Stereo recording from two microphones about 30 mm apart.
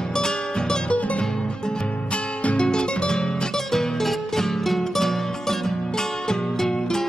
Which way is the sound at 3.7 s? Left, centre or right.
Centre.